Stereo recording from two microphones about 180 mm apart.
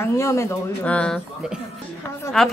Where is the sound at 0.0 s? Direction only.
15° left (ahead or behind).